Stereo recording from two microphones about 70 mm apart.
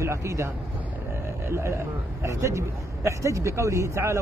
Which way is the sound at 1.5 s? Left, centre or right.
Right.